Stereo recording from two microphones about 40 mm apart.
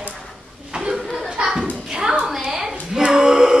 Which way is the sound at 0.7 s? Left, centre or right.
Centre.